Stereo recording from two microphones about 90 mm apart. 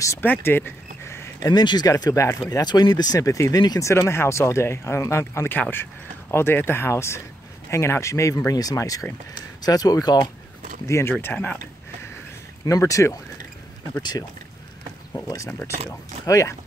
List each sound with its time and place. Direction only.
0.2 s a sound: 25° left (ahead or behind)
1.5 s speech: 55° left (ahead or behind)
1.9 s speech: 40° left (ahead or behind)
2.5 s speech: 50° left (ahead or behind)
3.9 s speech: 30° left (ahead or behind)
10.9 s speech: 30° left (ahead or behind)
12.6 s speech: 35° left (ahead or behind)
15.2 s speech: 35° left (ahead or behind)